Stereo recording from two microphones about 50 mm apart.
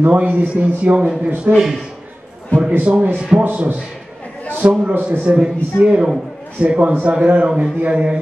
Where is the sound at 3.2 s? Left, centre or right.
Right.